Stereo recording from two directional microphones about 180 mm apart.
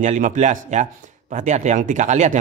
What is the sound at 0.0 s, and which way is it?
Speech, 45° right (ahead or behind).